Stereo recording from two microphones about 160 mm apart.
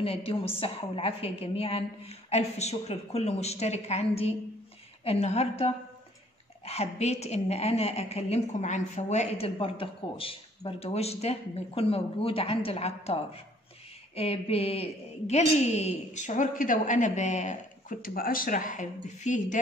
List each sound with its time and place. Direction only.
0.0 s a woman's voice: 35° left (ahead or behind)